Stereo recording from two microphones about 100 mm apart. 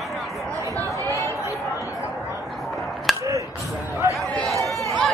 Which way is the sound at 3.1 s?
Centre (ahead or behind).